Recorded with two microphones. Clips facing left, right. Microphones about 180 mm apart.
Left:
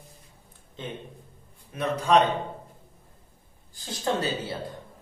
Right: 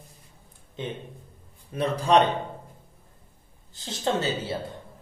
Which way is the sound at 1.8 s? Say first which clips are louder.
Right 1 dB; 35° right (ahead or behind).